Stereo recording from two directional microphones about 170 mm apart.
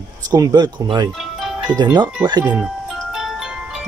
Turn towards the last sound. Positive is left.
turn(degrees=-5)  # may be behind; listen again after turning